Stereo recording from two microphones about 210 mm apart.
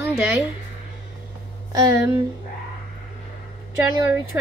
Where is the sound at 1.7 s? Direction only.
15° right (ahead or behind).